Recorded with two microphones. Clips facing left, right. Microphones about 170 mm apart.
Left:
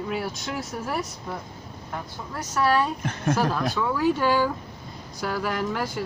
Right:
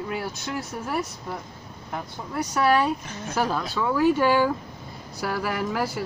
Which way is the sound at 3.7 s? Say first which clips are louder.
Right 2 dB; 5° right (ahead or behind).